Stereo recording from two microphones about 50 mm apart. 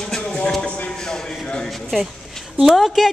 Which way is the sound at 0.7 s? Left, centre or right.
Left.